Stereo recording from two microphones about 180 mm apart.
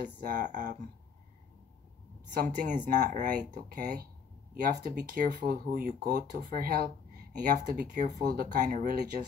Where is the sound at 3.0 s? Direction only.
45° right (ahead or behind).